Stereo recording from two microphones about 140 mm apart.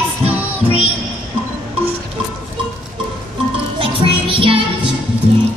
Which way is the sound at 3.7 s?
40° right (ahead or behind).